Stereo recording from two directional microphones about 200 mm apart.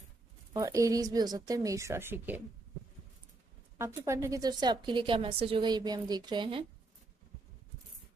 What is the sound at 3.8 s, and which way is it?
A woman's voice, 15° right (ahead or behind).